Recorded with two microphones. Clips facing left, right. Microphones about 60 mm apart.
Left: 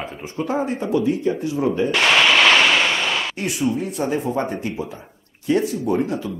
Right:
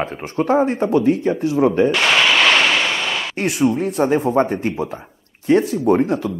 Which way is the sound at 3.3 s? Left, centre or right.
Right.